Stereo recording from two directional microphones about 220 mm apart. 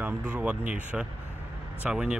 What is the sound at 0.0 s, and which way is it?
Speech, 5° right (ahead or behind).